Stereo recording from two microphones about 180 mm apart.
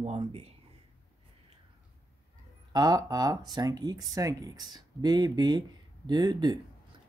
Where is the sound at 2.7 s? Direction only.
20° right (ahead or behind).